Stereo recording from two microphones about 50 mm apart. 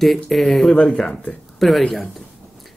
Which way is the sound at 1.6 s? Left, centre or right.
Centre.